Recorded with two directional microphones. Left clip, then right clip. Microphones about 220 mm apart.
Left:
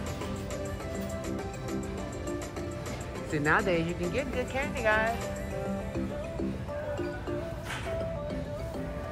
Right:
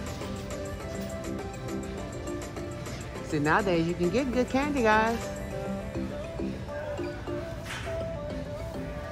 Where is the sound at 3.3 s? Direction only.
10° right (ahead or behind).